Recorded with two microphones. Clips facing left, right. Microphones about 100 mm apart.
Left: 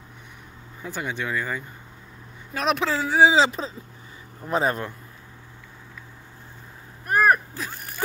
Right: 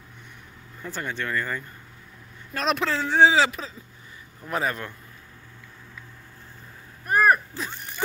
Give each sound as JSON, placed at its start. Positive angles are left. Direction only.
{"t": 0.8, "sound": "speech", "side_deg": 10}
{"t": 3.3, "sound": "speech", "side_deg": 25}
{"t": 7.1, "sound": "a sound", "side_deg": 0}